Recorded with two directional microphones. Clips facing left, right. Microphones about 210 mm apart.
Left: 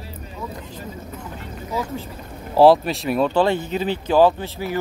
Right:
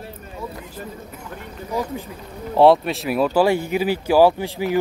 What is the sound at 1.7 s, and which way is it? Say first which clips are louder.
Speech: right 1 dB; 15° right (ahead or behind).